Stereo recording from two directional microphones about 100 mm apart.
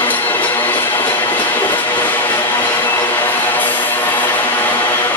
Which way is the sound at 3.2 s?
20° left (ahead or behind).